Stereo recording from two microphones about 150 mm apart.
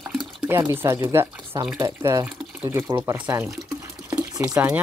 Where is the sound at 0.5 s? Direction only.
15° right (ahead or behind).